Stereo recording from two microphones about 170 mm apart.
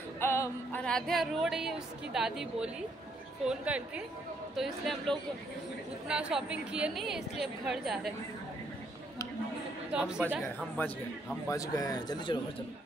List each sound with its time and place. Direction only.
0.2 s music: 15° left (ahead or behind); by 2.7 s 5° right (ahead or behind)
3.4 s a woman's voice: 5° right (ahead or behind)
4.6 s music: centre (ahead or behind)
9.9 s music: 5° right (ahead or behind)
11.4 s speech: 20° left (ahead or behind)